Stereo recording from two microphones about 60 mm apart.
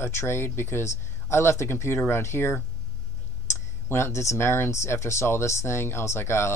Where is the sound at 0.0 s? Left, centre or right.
Left.